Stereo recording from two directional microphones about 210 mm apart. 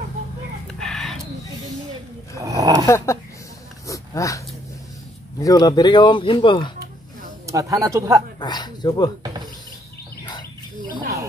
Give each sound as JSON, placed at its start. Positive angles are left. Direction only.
{"t": 0.7, "sound": "a sound", "side_deg": 0}
{"t": 2.4, "sound": "a sound", "side_deg": -15}
{"t": 3.8, "sound": "oink", "side_deg": 15}
{"t": 5.4, "sound": "speech", "side_deg": 20}
{"t": 7.4, "sound": "speech", "side_deg": -15}
{"t": 8.4, "sound": "speech", "side_deg": 20}